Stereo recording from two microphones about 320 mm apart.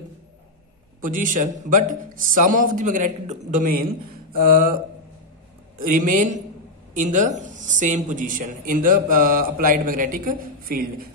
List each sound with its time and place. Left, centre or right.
1.0 s a man's voice: right
5.8 s a man's voice: right